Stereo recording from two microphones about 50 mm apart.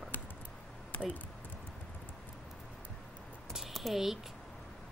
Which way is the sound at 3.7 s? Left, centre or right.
Centre.